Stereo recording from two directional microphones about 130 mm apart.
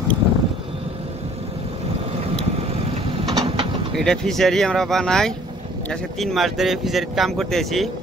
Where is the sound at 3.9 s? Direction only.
5° left (ahead or behind).